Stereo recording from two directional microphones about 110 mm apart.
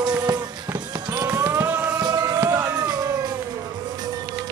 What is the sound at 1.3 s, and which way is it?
Music, 30° right (ahead or behind).